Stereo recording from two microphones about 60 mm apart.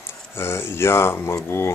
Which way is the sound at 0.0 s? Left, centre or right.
Left.